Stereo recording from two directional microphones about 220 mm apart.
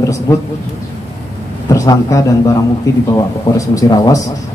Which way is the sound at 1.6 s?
15° left (ahead or behind).